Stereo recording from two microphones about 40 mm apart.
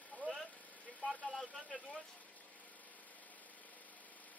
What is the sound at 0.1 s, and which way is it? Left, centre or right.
Vehicle, left.